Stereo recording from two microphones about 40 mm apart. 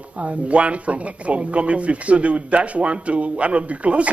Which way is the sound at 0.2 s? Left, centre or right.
Right.